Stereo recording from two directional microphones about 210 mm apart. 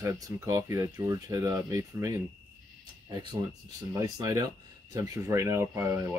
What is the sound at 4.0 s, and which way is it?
Speech, 15° right (ahead or behind).